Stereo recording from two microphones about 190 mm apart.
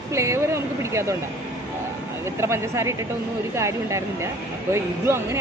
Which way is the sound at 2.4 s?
15° right (ahead or behind).